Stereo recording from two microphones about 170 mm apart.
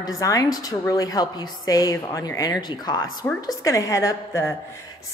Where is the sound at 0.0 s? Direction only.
20° left (ahead or behind).